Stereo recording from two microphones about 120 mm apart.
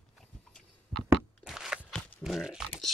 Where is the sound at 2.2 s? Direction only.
Centre (ahead or behind).